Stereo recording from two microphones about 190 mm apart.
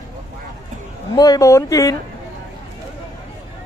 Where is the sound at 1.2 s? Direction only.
20° left (ahead or behind).